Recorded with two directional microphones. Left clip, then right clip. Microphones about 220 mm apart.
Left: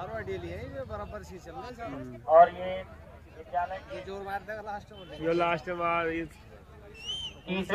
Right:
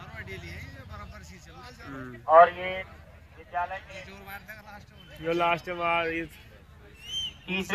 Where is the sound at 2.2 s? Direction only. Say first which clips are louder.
Right 2 dB; 15° left (ahead or behind).